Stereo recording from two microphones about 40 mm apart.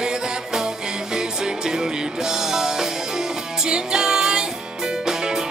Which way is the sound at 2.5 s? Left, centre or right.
Centre.